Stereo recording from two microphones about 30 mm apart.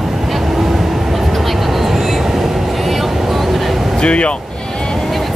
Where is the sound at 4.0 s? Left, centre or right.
Left.